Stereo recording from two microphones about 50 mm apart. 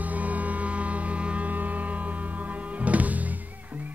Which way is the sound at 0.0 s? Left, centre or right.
Right.